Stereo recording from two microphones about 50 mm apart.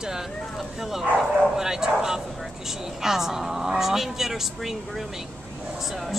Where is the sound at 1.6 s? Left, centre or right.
Centre.